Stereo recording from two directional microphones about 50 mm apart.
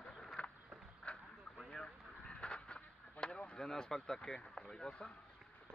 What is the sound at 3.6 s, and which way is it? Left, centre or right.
Speech, centre.